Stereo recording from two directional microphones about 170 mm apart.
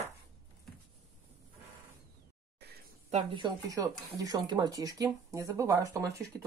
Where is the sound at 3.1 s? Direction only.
30° right (ahead or behind).